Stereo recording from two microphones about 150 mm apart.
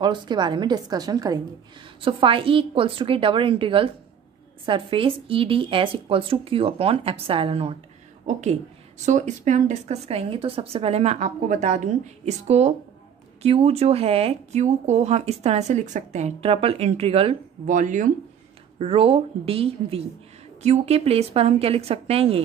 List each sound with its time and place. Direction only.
0.0 s a woman's voice: 30° right (ahead or behind)
2.0 s speech: 35° right (ahead or behind)
8.3 s speech: 50° right (ahead or behind)
17.6 s speech: 55° right (ahead or behind)
18.8 s speech: 40° right (ahead or behind)